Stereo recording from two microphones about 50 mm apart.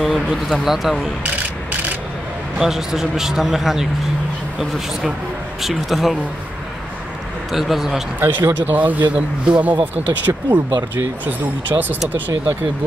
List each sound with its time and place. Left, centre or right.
0.0 s speech: centre
2.6 s a man's voice: centre
7.5 s speech: centre
8.2 s speech: right
8.7 s speech: right
9.4 s speech: right
9.7 s speech: right
11.7 s speech: right